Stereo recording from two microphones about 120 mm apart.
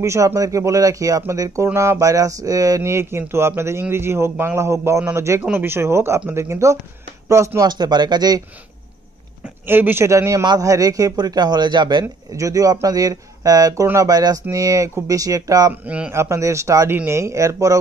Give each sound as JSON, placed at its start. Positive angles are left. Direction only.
{"t": 0.0, "sound": "speech", "side_deg": -25}
{"t": 7.7, "sound": "speech", "side_deg": -35}
{"t": 9.7, "sound": "speech", "side_deg": -15}
{"t": 15.7, "sound": "speech", "side_deg": -15}
{"t": 16.2, "sound": "speech", "side_deg": -25}